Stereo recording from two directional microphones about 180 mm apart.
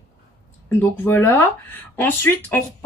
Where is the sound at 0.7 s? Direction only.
10° left (ahead or behind).